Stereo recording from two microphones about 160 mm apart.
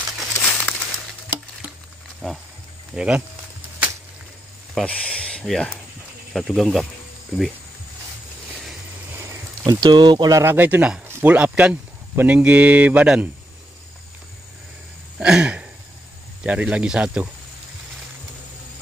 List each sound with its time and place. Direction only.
0.4 s crumpling: 10° left (ahead or behind)
2.2 s speech: 5° left (ahead or behind)
4.7 s speech: 5° left (ahead or behind)
9.1 s a sound: 15° right (ahead or behind)
9.7 s speech: 25° right (ahead or behind); by 13.3 s 10° right (ahead or behind)
15.1 s a sound: 5° right (ahead or behind)
16.4 s speech: 10° right (ahead or behind)